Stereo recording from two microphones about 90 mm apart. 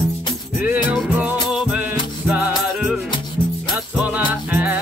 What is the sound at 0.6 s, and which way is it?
Music, 15° right (ahead or behind).